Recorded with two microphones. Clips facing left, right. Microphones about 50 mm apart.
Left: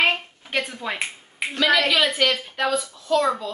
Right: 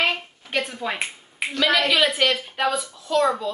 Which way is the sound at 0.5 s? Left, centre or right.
Centre.